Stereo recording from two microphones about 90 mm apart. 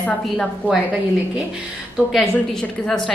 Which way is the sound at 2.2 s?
10° left (ahead or behind).